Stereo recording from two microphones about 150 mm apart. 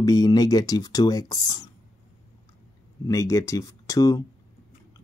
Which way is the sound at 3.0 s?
20° left (ahead or behind).